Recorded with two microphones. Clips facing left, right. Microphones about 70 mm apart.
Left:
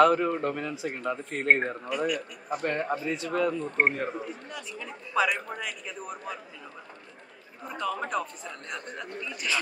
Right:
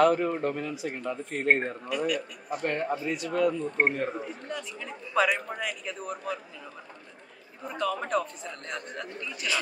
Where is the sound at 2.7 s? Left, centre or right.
Left.